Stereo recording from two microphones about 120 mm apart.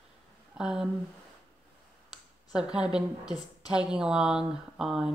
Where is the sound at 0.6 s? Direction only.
5° right (ahead or behind).